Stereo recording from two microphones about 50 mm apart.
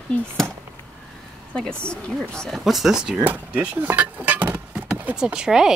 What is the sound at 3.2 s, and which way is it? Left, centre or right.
Speech, right.